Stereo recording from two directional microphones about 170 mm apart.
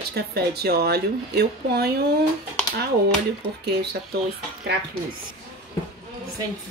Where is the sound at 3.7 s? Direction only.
75° right (ahead or behind).